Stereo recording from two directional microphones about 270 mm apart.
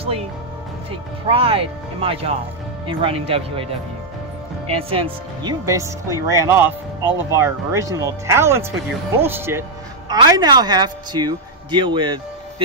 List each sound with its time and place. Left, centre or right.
1.2 s speech: right
4.6 s speech: right